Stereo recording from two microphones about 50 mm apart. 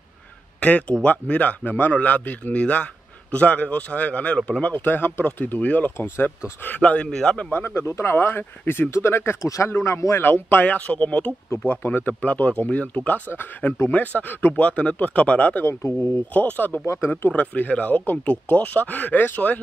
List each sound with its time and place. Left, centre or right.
0.6 s speech: left
4.7 s speech: left
7.1 s a man's voice: centre
7.5 s speech: left
7.8 s speech: left
8.1 s speech: left
9.4 s speech: left
9.7 s speech: left
10.2 s speech: left
11.5 s speech: left
15.6 s speech: left
16.3 s speech: left
16.8 s speech: left
17.3 s speech: left